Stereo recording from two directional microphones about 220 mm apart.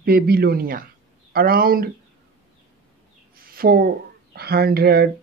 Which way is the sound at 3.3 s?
40° right (ahead or behind).